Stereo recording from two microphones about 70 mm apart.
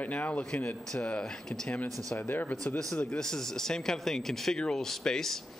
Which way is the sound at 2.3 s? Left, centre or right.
Left.